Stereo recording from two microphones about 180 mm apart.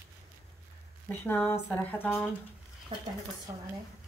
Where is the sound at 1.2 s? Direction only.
10° left (ahead or behind).